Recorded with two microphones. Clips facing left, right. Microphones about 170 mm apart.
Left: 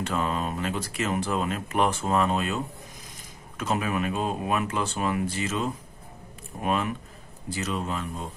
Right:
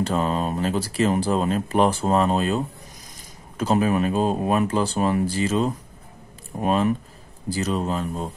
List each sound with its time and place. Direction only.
0.0 s speech: 35° right (ahead or behind)